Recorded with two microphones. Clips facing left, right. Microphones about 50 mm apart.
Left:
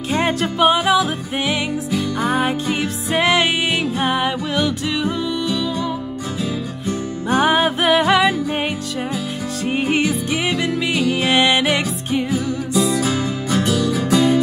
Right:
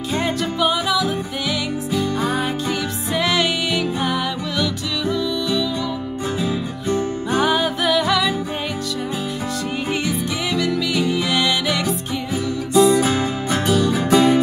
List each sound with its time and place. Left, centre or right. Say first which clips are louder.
0.1 s music: left 3 dB; left
7.2 s music: left 4 dB; left
9.8 s music: left 4 dB; left
12.3 s music: left 2 dB; right